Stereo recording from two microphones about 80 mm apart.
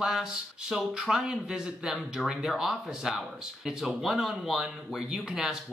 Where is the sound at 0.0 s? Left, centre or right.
Centre.